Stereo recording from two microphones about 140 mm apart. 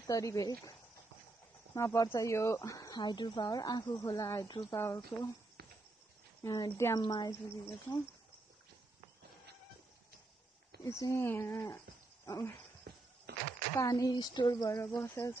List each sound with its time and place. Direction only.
0.0 s speech: 25° left (ahead or behind)
4.7 s speech: 20° left (ahead or behind)
6.4 s speech: 20° left (ahead or behind)
10.8 s speech: 20° left (ahead or behind)
13.7 s speech: 25° left (ahead or behind)